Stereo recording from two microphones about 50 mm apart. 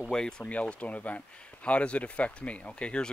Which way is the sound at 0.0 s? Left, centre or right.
Centre.